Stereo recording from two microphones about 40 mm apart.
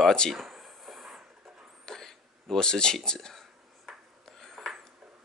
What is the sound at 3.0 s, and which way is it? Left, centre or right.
Speech, centre.